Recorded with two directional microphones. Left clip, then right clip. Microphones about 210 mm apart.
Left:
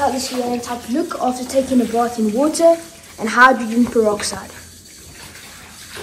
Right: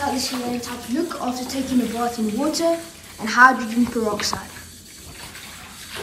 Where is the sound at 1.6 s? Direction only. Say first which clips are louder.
Left 6 dB; 5° right (ahead or behind).